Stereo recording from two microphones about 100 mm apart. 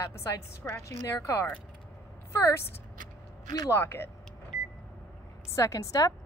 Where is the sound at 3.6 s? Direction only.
25° left (ahead or behind).